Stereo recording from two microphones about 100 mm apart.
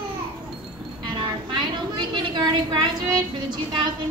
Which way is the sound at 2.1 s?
45° right (ahead or behind).